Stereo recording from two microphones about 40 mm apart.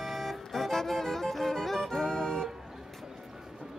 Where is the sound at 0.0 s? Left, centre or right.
Centre.